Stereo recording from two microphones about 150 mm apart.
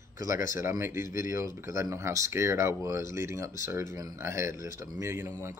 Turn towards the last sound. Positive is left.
turn(degrees=-15)  # may be behind; listen again after turning